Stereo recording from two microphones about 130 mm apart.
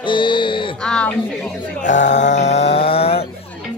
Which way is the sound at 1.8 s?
70° left (ahead or behind).